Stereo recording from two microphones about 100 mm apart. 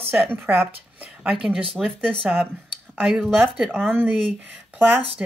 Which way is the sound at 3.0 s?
Centre (ahead or behind).